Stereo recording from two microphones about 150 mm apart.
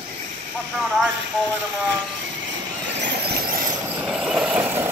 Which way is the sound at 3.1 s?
80° right.